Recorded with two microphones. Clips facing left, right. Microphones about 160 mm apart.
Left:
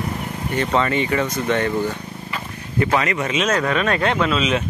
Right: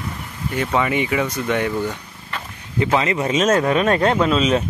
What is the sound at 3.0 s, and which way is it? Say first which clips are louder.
Speech: right 2 dB; 25° right (ahead or behind).